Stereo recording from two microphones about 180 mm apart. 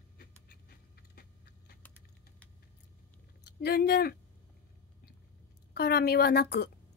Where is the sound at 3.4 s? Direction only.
60° left (ahead or behind).